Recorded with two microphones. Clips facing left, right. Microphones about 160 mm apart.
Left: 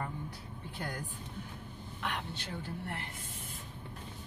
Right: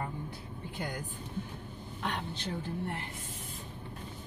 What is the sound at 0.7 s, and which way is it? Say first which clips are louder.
Speech: right 2 dB; 20° right (ahead or behind).